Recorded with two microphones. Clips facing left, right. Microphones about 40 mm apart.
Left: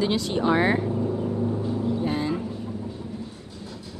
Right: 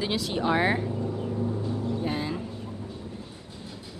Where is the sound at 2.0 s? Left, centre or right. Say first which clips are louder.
Left 4 dB; centre.